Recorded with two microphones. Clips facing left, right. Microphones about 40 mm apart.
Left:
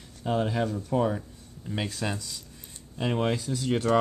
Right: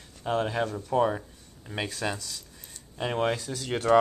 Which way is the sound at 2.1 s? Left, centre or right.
Centre.